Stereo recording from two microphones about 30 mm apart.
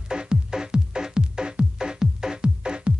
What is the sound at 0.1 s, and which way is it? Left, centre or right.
Music, right.